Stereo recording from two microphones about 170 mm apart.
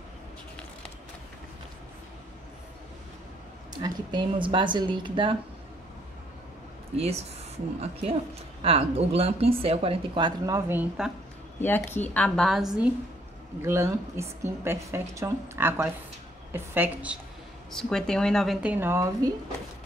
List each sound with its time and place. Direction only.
3.8 s a woman's voice: 25° right (ahead or behind)
7.0 s speech: 40° right (ahead or behind); by 11.1 s 10° right (ahead or behind)
11.6 s a woman's voice: 10° left (ahead or behind); by 12.9 s 5° right (ahead or behind)
13.6 s a woman's voice: 15° right (ahead or behind)
17.6 s speech: 5° left (ahead or behind); by 19.3 s 15° right (ahead or behind)